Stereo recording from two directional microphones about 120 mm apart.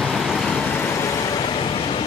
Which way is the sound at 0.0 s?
Centre (ahead or behind).